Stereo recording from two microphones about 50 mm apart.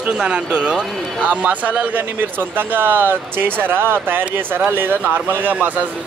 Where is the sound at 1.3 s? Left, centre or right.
Right.